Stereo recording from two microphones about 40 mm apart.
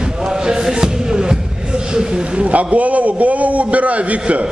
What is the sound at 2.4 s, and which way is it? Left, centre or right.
A man's voice, right.